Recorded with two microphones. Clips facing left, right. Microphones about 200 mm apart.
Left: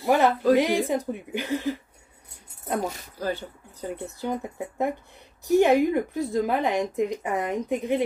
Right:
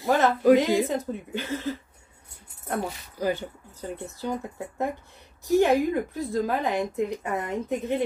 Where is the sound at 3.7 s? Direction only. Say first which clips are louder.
Left 4 dB; 15° left (ahead or behind).